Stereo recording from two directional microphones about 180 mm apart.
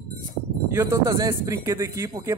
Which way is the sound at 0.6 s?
15° right (ahead or behind).